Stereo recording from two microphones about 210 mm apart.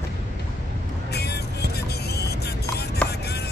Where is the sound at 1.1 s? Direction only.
50° left (ahead or behind).